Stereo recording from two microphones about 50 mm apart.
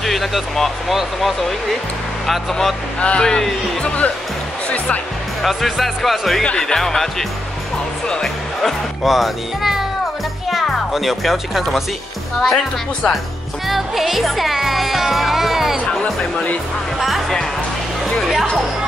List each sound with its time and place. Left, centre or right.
0.0 s speech: centre
3.0 s speech: left
3.3 s speech: centre
3.8 s speech: left
4.6 s music: left
5.4 s speech: centre
9.0 s speech: centre
12.4 s speech: centre
13.7 s speech: centre